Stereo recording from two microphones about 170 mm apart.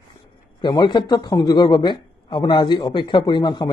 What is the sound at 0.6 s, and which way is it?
Speech, 25° left (ahead or behind).